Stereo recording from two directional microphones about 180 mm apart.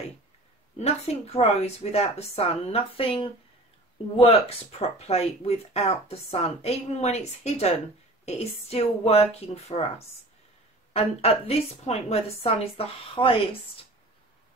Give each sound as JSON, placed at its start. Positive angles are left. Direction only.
{"t": 0.7, "sound": "speech", "side_deg": 35}
{"t": 10.9, "sound": "speech", "side_deg": 35}